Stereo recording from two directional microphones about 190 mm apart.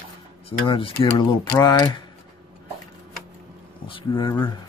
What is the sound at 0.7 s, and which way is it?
Speech, 30° left (ahead or behind).